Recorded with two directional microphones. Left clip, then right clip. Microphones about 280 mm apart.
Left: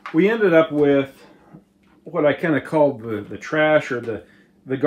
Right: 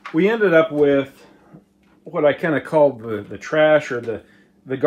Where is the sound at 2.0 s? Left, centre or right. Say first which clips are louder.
Right 1 dB; centre.